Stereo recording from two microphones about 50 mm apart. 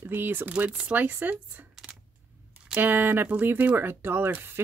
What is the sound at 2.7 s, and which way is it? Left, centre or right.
Speech, right.